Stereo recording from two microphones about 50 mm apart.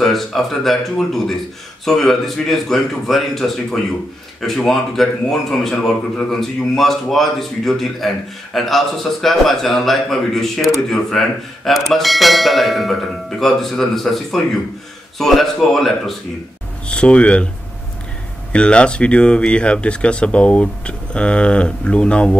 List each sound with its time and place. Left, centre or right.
0.0 s a man's voice: centre
16.8 s speech: left
18.5 s speech: left